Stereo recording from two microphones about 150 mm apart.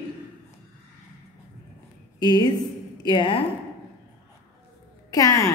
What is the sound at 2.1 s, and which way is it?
A woman's voice, 30° left (ahead or behind).